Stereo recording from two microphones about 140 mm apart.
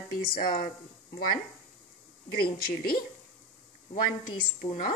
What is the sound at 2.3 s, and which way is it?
Speech, 90° left.